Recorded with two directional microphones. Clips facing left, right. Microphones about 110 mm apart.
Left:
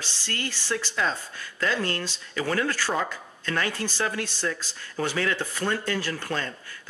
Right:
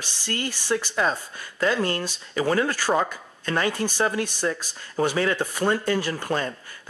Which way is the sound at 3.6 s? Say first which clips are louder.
Right 6 dB; 15° right (ahead or behind).